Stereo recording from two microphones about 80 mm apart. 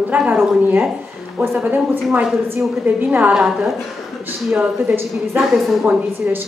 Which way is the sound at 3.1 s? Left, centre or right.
Right.